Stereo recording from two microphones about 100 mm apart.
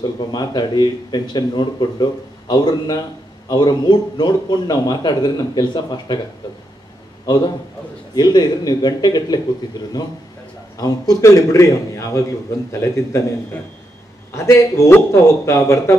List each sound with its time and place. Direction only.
0.3 s speech: 45° left (ahead or behind)
7.2 s a man's voice: 40° left (ahead or behind)